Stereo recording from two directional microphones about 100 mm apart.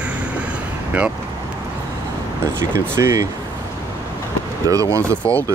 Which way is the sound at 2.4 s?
25° right (ahead or behind).